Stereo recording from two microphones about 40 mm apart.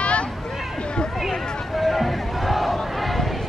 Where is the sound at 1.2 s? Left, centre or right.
Centre.